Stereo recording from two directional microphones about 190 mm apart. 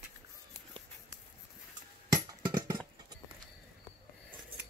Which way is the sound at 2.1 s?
20° right (ahead or behind).